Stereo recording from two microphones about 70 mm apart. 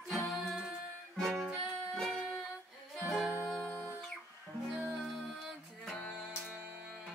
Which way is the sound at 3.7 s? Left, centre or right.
Left.